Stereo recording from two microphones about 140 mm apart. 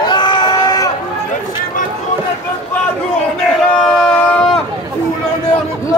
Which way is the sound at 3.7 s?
5° left (ahead or behind).